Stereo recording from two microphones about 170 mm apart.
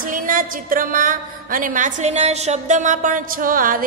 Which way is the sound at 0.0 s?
55° right (ahead or behind).